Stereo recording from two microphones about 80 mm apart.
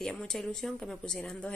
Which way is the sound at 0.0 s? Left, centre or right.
Centre.